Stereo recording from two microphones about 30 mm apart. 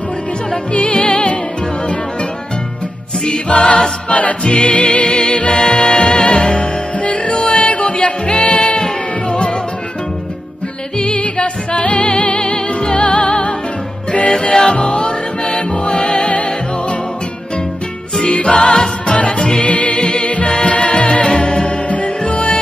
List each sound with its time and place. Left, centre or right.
0.7 s music: left
3.3 s music: left
4.1 s music: left
4.4 s music: left
11.1 s music: left
14.7 s music: left
18.2 s music: left
19.0 s music: left
19.3 s music: left
19.7 s music: left
20.0 s music: left
20.2 s music: left
21.8 s music: left